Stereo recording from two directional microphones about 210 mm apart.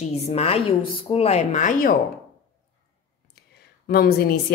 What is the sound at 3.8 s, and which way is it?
Speech, 50° left (ahead or behind).